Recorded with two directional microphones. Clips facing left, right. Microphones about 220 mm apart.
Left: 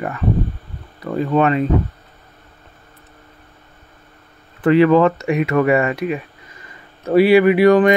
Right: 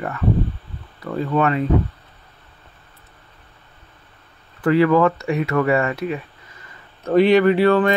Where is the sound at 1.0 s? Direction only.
20° left (ahead or behind).